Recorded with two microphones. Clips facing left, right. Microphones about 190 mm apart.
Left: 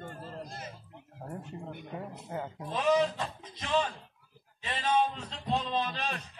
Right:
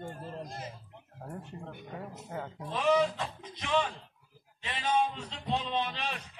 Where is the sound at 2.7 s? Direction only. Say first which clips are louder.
Even; 10° right (ahead or behind).